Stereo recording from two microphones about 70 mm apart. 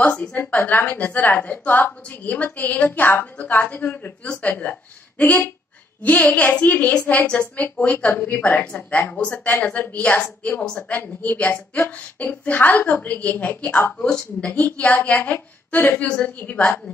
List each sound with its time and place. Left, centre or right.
0.0 s a woman's voice: centre
9.1 s a woman's voice: centre
10.6 s a woman's voice: centre
10.9 s a woman's voice: left
13.9 s a woman's voice: centre
15.0 s a woman's voice: left